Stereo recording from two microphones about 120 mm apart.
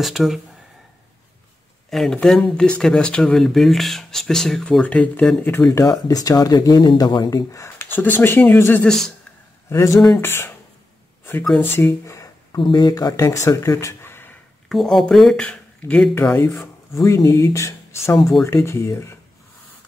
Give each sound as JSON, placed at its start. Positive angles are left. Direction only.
{"t": 0.0, "sound": "speech", "side_deg": 0}
{"t": 1.9, "sound": "speech", "side_deg": 5}
{"t": 5.9, "sound": "speech", "side_deg": 30}
{"t": 8.8, "sound": "speech", "side_deg": 5}
{"t": 9.7, "sound": "speech", "side_deg": 25}
{"t": 9.9, "sound": "speech", "side_deg": 5}
{"t": 10.2, "sound": "speech", "side_deg": 20}
{"t": 11.6, "sound": "speech", "side_deg": 20}
{"t": 12.5, "sound": "speech", "side_deg": 40}
{"t": 14.7, "sound": "speech", "side_deg": 0}
{"t": 16.2, "sound": "speech", "side_deg": 20}